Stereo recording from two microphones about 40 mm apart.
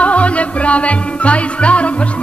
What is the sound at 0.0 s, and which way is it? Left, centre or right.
Music, left.